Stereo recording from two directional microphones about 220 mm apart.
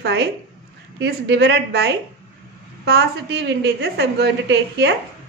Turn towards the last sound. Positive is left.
turn(degrees=-50)  # may be behind; listen again after turning